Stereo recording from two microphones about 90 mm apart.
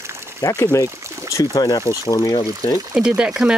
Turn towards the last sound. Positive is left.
turn(degrees=-10)  # may be behind; listen again after turning